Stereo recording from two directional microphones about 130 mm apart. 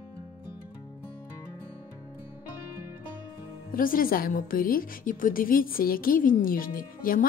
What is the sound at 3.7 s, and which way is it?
A woman's voice, 90° left.